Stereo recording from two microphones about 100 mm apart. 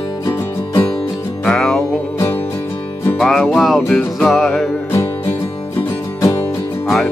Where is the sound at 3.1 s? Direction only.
5° left (ahead or behind).